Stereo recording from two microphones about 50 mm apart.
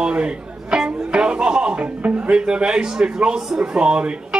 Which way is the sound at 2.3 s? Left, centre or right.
Centre.